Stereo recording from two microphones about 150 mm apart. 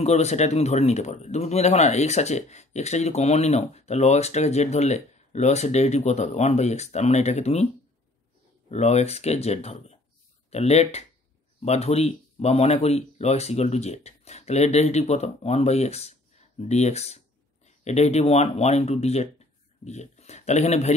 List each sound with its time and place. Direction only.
0.0 s speech: 45° left (ahead or behind)
8.6 s speech: 45° left (ahead or behind)